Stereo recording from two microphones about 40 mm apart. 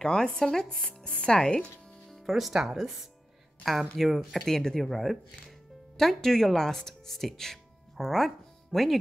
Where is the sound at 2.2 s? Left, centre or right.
Centre.